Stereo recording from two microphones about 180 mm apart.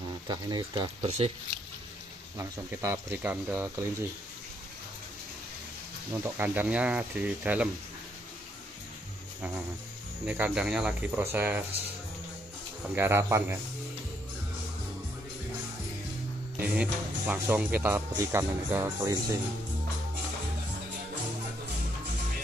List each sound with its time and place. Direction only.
0.3 s speech: 25° right (ahead or behind)
2.3 s speech: 15° right (ahead or behind)
6.2 s speech: 10° right (ahead or behind)
10.2 s speech: 5° right (ahead or behind)
12.9 s speech: 15° right (ahead or behind)
16.5 s speech: 5° right (ahead or behind)